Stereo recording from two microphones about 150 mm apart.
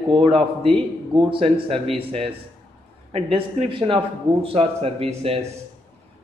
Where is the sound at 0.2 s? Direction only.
35° right (ahead or behind).